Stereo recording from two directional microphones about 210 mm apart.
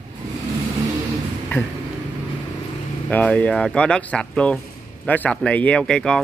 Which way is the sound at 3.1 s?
5° left (ahead or behind).